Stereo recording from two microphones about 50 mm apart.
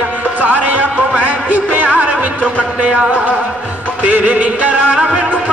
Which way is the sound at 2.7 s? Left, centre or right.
Right.